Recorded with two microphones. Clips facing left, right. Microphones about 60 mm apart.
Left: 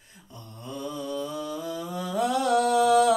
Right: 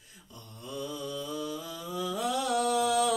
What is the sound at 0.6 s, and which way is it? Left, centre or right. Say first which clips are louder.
Mantra: left 3 dB; left.